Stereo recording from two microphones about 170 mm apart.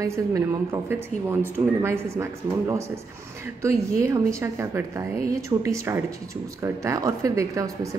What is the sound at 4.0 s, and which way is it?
Speech, 15° right (ahead or behind).